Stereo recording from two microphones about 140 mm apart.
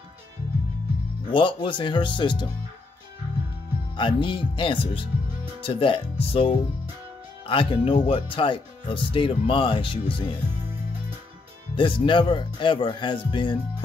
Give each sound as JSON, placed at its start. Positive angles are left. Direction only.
{"t": 1.2, "sound": "speech", "side_deg": 35}
{"t": 3.9, "sound": "speech", "side_deg": 35}
{"t": 11.7, "sound": "speech", "side_deg": 35}